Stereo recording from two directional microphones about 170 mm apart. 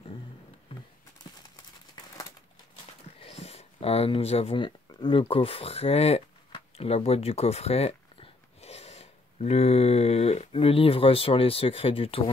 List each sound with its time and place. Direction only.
3.2 s speech: 35° left (ahead or behind)